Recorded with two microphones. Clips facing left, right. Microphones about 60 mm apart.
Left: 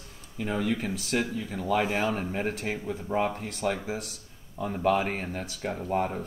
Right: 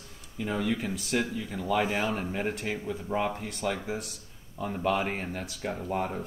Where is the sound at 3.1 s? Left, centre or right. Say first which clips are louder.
Left 2 dB; centre.